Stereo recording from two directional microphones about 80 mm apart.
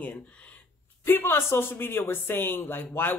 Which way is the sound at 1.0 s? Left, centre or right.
Left.